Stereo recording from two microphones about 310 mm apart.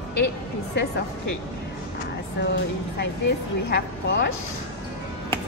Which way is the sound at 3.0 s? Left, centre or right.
Left.